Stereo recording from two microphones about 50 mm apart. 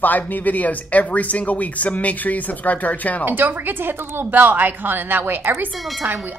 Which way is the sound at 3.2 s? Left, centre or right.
Right.